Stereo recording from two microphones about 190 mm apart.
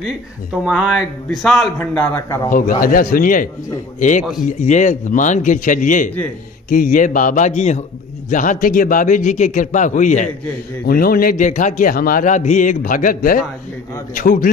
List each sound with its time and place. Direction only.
0.0 s a man's voice: 5° right (ahead or behind); by 2.5 s 15° left (ahead or behind)
2.5 s a man's voice: 45° left (ahead or behind)
4.2 s speech: centre (ahead or behind)
4.5 s a man's voice: 40° left (ahead or behind)